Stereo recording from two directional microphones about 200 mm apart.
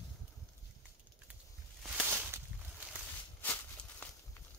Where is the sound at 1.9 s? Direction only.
10° right (ahead or behind).